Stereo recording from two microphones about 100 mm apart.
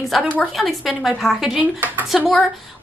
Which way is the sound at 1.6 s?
20° right (ahead or behind).